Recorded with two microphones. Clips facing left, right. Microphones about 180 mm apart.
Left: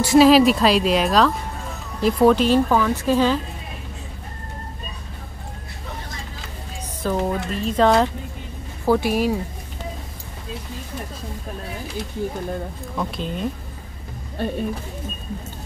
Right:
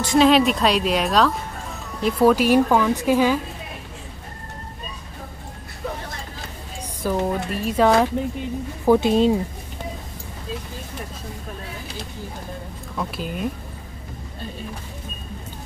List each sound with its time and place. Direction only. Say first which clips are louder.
0.0 s speech: left 3 dB; 5° left (ahead or behind); by 3.3 s 10° right (ahead or behind)
7.0 s speech: even; 10° right (ahead or behind)
12.9 s speech: left 1 dB; centre (ahead or behind)